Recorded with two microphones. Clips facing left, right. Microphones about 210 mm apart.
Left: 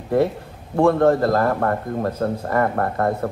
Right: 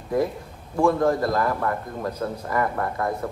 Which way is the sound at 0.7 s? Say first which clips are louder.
Left 4 dB; 60° left (ahead or behind).